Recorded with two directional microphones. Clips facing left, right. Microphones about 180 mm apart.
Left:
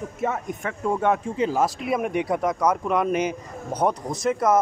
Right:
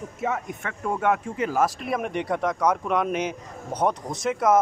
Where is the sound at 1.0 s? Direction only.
30° left (ahead or behind).